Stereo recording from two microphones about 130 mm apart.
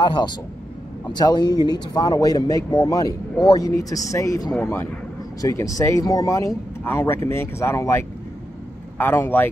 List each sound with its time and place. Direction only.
0.0 s a man's voice: 35° left (ahead or behind); by 9.5 s 15° left (ahead or behind)